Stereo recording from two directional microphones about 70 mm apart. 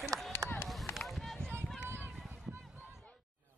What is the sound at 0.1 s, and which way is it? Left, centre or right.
Run, right.